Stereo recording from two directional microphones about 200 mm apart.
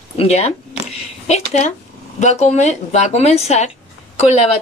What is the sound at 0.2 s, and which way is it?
Speech, 30° left (ahead or behind).